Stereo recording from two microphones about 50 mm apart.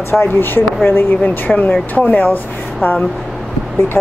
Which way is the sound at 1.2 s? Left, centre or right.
Left.